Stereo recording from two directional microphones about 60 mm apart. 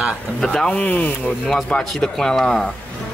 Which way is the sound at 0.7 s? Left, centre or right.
Left.